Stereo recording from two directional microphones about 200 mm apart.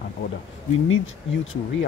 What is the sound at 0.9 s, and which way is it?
Speech, 75° left (ahead or behind).